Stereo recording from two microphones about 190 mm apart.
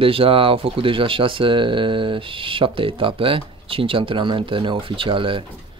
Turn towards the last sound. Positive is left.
turn(degrees=-25)  # may be behind; listen again after turning